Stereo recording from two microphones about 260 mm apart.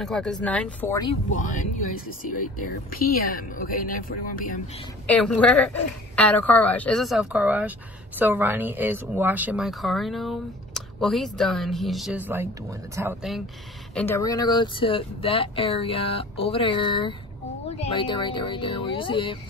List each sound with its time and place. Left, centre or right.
0.0 s a woman's voice: centre
2.9 s speech: left
5.0 s a woman's voice: centre
13.9 s speech: centre